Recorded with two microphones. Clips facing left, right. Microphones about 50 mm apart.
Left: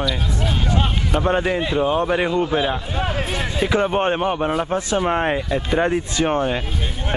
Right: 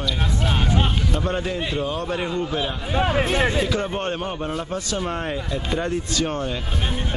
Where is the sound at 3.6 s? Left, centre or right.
Left.